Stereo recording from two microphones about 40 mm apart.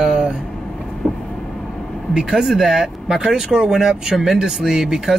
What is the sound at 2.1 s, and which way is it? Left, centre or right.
Speech, centre.